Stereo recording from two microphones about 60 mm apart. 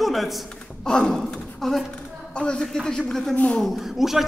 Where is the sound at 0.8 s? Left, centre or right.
Centre.